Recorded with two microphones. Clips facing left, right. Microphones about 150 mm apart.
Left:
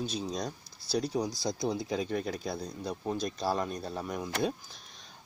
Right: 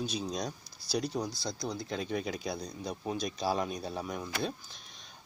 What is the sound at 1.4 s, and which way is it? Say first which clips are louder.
Speech: left 5 dB; 20° left (ahead or behind).